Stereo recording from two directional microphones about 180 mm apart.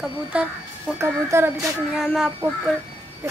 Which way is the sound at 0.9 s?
15° right (ahead or behind).